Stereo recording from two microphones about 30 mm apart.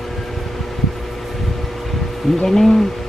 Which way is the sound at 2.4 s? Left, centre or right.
Centre.